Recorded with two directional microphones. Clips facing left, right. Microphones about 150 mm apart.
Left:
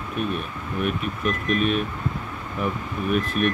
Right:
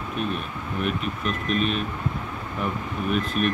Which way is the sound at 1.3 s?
50° left (ahead or behind).